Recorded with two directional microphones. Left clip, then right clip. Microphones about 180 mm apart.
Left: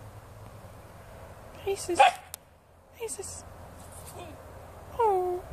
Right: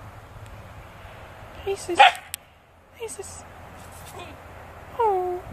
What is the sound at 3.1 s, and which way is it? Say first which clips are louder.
Speech: right 3 dB; 50° left (ahead or behind).